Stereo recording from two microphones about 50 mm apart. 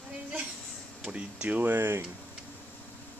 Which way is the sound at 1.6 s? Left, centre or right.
Right.